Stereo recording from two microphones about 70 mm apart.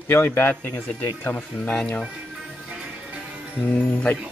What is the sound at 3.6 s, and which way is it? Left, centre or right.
Speech, centre.